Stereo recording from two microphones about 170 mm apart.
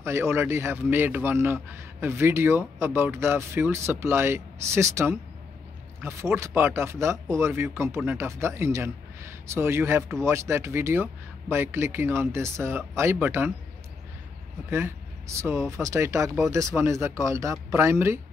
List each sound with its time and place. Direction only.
0.0 s a man's voice: 15° right (ahead or behind)
14.7 s a man's voice: 15° right (ahead or behind)